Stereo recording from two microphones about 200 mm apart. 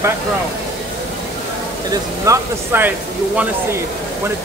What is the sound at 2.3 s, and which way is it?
Speech, 10° right (ahead or behind).